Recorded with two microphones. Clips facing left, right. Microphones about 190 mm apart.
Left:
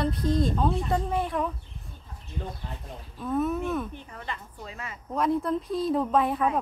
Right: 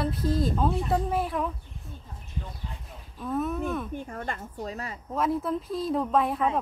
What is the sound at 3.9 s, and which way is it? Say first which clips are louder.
Speech: right 5 dB; 45° right (ahead or behind).